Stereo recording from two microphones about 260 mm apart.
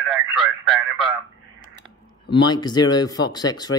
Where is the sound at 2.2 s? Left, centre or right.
Centre.